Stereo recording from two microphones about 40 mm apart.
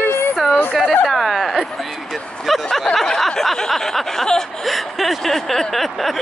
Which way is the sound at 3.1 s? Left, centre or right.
Centre.